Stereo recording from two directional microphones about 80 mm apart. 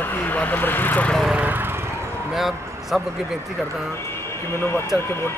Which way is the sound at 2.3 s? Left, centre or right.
Centre.